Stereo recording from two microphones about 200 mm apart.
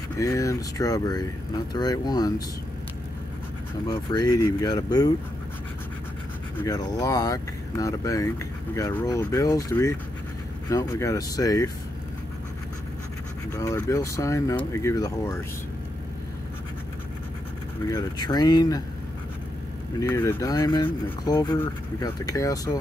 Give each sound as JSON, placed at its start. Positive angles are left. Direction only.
{"t": 0.2, "sound": "speech", "side_deg": 15}
{"t": 3.8, "sound": "speech", "side_deg": 20}
{"t": 6.5, "sound": "speech", "side_deg": 15}
{"t": 13.5, "sound": "speech", "side_deg": 15}
{"t": 17.8, "sound": "speech", "side_deg": 20}
{"t": 20.0, "sound": "speech", "side_deg": 15}